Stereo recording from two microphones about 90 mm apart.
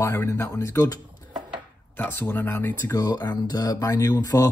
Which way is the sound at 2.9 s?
45° left (ahead or behind).